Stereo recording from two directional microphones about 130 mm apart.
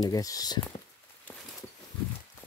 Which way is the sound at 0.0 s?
25° left (ahead or behind).